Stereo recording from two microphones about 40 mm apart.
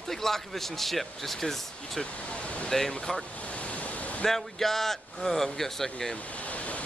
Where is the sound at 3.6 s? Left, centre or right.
Left.